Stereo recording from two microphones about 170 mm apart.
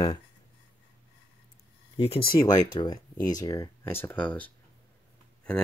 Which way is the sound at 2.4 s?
20° left (ahead or behind).